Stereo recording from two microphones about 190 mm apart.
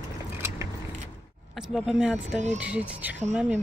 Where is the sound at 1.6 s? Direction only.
Centre (ahead or behind).